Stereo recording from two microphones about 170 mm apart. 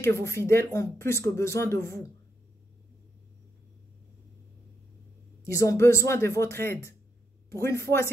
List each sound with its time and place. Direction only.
0.0 s speech: 15° left (ahead or behind)
5.4 s speech: 20° left (ahead or behind)